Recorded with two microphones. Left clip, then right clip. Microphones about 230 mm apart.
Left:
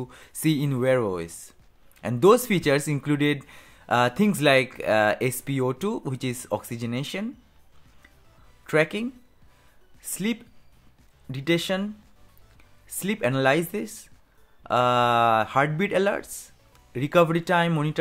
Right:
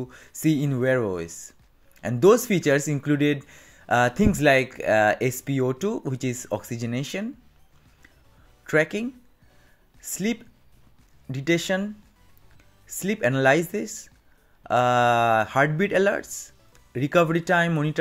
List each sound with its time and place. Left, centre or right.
0.0 s speech: centre
8.6 s speech: centre